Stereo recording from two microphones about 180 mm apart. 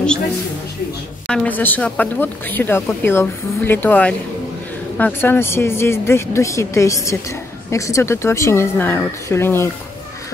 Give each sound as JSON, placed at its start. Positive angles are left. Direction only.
{"t": 1.2, "sound": "a woman's voice", "side_deg": 5}